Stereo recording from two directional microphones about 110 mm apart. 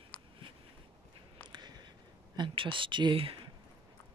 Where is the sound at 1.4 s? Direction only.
40° right (ahead or behind).